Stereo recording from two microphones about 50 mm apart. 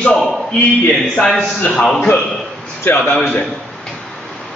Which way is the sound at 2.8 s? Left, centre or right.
Left.